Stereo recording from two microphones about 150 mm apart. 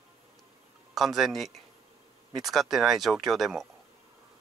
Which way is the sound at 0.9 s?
Centre (ahead or behind).